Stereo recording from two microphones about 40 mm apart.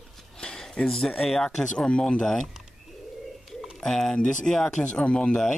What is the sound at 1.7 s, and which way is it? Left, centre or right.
Speech, left.